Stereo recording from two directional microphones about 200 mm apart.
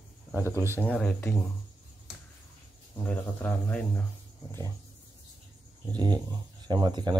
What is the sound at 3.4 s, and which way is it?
Speech, 10° left (ahead or behind).